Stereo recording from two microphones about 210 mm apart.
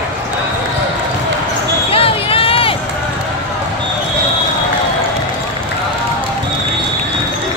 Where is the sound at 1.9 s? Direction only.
25° left (ahead or behind).